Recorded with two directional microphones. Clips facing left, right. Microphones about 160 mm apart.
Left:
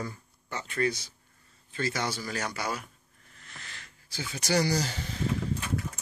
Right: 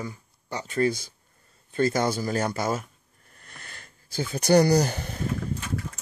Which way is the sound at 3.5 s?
50° right (ahead or behind).